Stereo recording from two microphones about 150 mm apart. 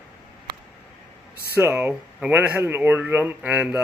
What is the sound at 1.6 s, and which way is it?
Speech, 10° right (ahead or behind).